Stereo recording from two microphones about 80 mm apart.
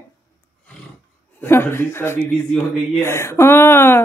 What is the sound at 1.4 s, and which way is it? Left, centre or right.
A woman's voice, left.